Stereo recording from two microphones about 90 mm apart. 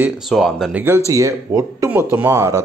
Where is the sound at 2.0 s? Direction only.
30° right (ahead or behind).